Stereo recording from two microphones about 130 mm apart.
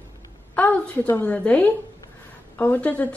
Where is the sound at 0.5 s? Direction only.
10° left (ahead or behind).